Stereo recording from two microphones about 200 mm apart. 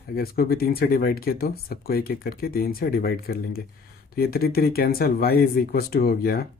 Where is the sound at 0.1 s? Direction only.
50° left (ahead or behind).